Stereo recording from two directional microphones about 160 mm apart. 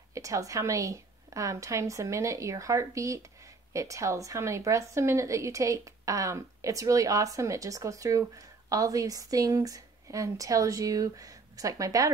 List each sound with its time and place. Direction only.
0.1 s a woman's voice: 20° right (ahead or behind)